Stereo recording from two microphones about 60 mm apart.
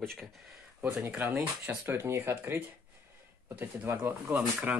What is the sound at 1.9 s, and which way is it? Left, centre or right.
Speech, right.